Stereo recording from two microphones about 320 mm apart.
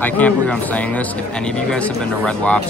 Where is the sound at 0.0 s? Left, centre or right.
Centre.